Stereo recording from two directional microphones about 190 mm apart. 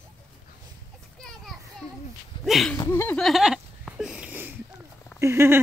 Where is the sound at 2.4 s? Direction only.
Centre (ahead or behind).